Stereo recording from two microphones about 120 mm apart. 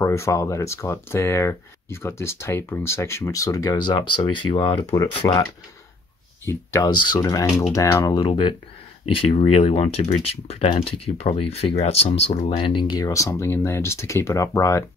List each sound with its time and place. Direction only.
0.0 s speech: 25° left (ahead or behind)
6.4 s speech: 25° left (ahead or behind)
6.9 s speech: 35° left (ahead or behind)
8.0 s speech: 40° left (ahead or behind)
9.3 s speech: 60° left (ahead or behind); by 14.9 s 25° left (ahead or behind)